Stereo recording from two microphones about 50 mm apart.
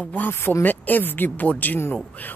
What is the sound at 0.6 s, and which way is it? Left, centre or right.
Speech, left.